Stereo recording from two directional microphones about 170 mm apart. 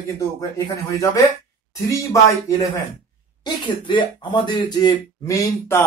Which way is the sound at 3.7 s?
30° left (ahead or behind).